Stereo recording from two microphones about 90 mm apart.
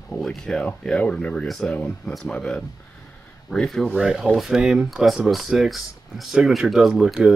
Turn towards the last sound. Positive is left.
turn(degrees=-5)  # may be behind; listen again after turning